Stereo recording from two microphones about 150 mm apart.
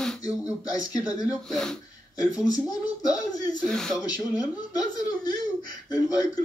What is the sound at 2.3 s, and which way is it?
Speech, 25° left (ahead or behind).